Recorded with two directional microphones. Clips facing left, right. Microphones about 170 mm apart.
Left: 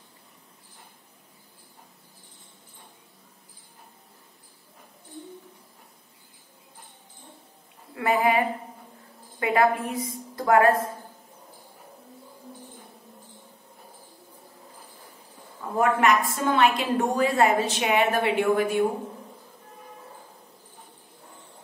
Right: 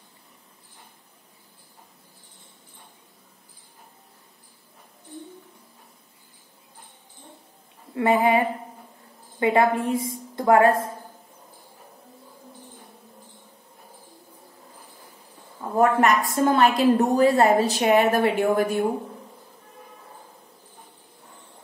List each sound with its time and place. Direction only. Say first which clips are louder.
7.9 s a sound: right 3 dB; 25° right (ahead or behind)
9.4 s a woman's voice: right 2 dB; 25° right (ahead or behind)
16.0 s a woman's voice: right 2 dB; 40° right (ahead or behind)